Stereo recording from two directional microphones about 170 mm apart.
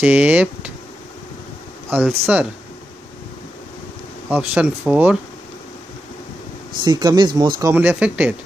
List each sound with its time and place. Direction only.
0.0 s speech: 10° right (ahead or behind)
2.0 s speech: 5° right (ahead or behind)
4.3 s speech: 10° right (ahead or behind)
6.8 s speech: 25° right (ahead or behind); by 8.4 s 10° right (ahead or behind)